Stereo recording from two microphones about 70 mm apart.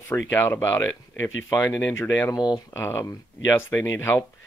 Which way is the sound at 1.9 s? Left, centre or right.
Left.